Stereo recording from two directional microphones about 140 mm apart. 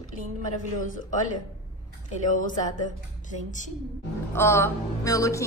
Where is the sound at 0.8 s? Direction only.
65° left (ahead or behind).